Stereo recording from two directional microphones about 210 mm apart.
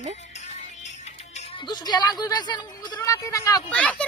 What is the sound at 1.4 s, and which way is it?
A woman's voice, 20° left (ahead or behind).